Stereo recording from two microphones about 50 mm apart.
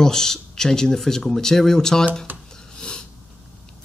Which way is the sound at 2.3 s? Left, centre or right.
Right.